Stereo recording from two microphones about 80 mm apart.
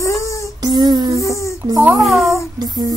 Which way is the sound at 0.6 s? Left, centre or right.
Right.